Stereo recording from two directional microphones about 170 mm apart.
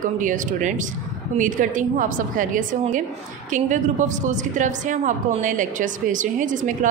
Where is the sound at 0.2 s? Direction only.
50° right (ahead or behind).